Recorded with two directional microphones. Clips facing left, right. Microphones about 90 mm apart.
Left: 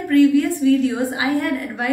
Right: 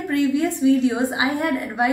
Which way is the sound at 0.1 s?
20° right (ahead or behind).